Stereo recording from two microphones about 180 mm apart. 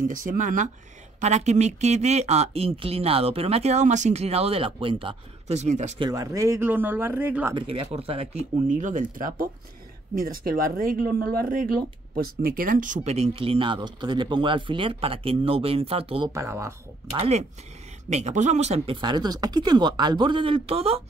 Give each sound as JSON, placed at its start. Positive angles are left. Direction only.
{"t": 0.0, "sound": "speech", "side_deg": -45}
{"t": 5.9, "sound": "speech", "side_deg": -20}
{"t": 7.5, "sound": "speech", "side_deg": -30}
{"t": 8.6, "sound": "speech", "side_deg": -45}
{"t": 16.3, "sound": "speech", "side_deg": -15}
{"t": 17.1, "sound": "speech", "side_deg": -35}